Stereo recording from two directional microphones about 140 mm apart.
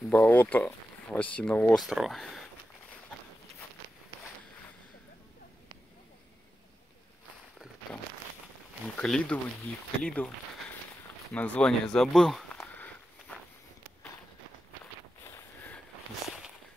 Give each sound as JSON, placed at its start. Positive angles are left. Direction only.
{"t": 0.1, "sound": "speech", "side_deg": 10}
{"t": 1.8, "sound": "speech", "side_deg": 0}
{"t": 8.8, "sound": "speech", "side_deg": 5}
{"t": 10.0, "sound": "a sound", "side_deg": 10}
{"t": 11.3, "sound": "speech", "side_deg": 10}
{"t": 12.7, "sound": "walk", "side_deg": 10}
{"t": 15.2, "sound": "a sound", "side_deg": 15}
{"t": 16.3, "sound": "walk", "side_deg": -5}